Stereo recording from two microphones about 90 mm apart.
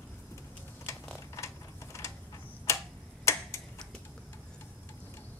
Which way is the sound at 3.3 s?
30° left (ahead or behind).